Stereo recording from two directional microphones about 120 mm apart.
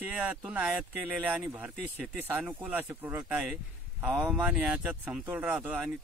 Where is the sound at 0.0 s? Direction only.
10° right (ahead or behind).